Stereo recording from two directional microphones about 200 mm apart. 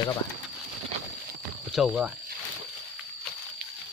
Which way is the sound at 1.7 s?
5° right (ahead or behind).